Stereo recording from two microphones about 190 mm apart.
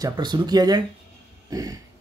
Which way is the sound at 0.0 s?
20° right (ahead or behind).